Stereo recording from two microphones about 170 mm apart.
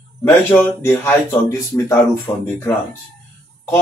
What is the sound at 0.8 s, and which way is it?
Speech, 15° left (ahead or behind).